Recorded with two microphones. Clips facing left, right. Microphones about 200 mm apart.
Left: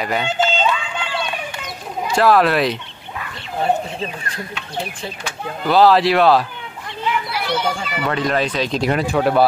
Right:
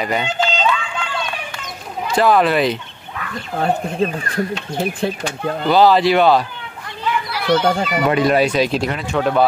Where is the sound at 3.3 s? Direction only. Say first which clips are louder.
Even; 50° right (ahead or behind).